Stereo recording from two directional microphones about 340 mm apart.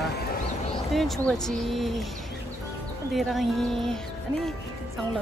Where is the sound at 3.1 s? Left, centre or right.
Centre.